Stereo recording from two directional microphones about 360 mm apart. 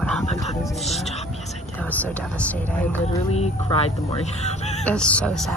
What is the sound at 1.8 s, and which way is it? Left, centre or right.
Speech, centre.